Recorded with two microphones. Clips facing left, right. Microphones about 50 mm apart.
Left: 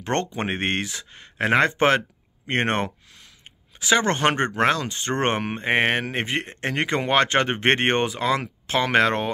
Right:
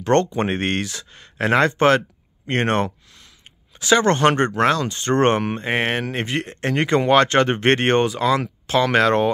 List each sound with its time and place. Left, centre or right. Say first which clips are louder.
0.0 s speech: right 7 dB; centre
5.7 s speech: left 2 dB; left